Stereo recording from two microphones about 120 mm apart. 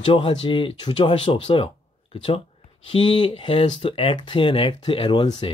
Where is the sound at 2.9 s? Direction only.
45° left (ahead or behind).